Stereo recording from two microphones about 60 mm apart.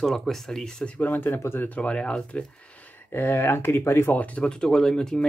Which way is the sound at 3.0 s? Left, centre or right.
Left.